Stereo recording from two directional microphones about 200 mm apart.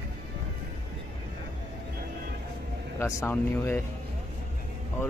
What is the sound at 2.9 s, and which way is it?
Speech, 10° left (ahead or behind).